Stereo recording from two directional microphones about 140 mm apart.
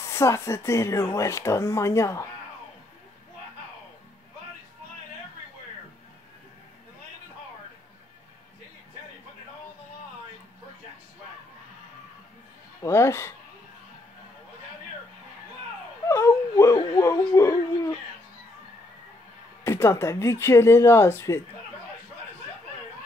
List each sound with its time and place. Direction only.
0.0 s speech: 20° left (ahead or behind)
12.8 s speech: 20° left (ahead or behind)
16.1 s whimper: 20° left (ahead or behind)
19.6 s speech: 20° left (ahead or behind)